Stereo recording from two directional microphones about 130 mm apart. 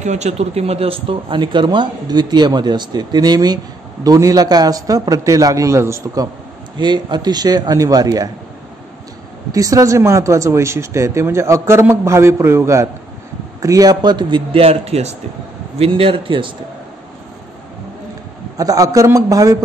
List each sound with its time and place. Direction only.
0.0 s speech: 60° right (ahead or behind); by 6.2 s 20° right (ahead or behind)
6.8 s speech: 35° right (ahead or behind)
9.5 s speech: 25° right (ahead or behind)
18.6 s speech: 25° right (ahead or behind)